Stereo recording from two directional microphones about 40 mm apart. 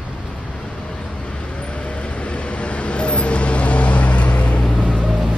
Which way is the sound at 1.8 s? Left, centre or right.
Left.